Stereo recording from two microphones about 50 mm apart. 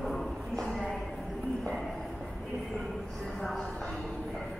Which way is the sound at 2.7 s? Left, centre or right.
Centre.